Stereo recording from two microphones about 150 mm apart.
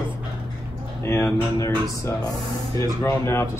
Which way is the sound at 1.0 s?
20° left (ahead or behind).